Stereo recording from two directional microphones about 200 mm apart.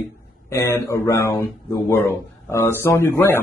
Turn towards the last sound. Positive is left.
turn(degrees=10)  # may be behind; listen again after turning